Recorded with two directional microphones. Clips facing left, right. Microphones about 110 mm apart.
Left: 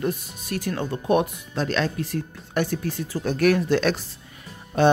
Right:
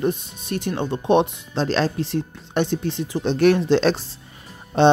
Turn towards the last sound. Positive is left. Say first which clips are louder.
# right 3 dB
turn(degrees=-25)  # may be behind; listen again after turning